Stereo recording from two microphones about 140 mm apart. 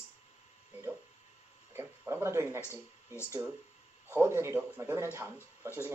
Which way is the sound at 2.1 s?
20° right (ahead or behind).